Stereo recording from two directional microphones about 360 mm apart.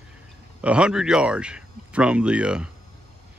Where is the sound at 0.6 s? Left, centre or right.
Centre.